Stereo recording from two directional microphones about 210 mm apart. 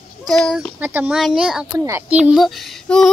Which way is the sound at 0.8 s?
10° right (ahead or behind).